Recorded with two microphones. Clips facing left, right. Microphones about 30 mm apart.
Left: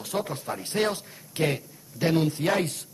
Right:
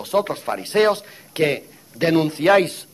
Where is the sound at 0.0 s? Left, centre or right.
Right.